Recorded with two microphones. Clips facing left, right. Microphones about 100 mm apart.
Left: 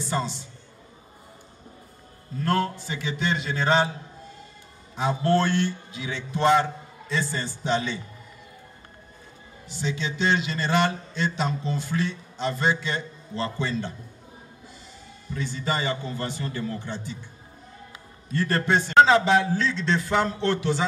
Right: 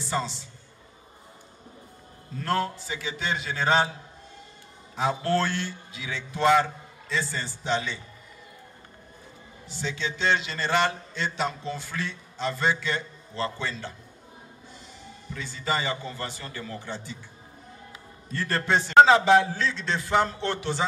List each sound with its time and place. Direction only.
0.0 s a man's voice: 15° left (ahead or behind)
2.9 s a man's voice: 15° right (ahead or behind)
4.9 s a man's voice: 20° left (ahead or behind)
9.7 s a man's voice: 15° left (ahead or behind)
15.4 s a man's voice: 20° left (ahead or behind)
18.3 s a man's voice: 15° left (ahead or behind)
18.9 s a man's voice: 15° right (ahead or behind)